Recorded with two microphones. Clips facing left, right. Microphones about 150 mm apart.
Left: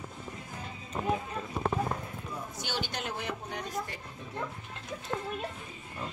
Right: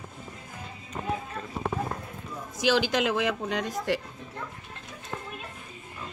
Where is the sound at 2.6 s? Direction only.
90° right.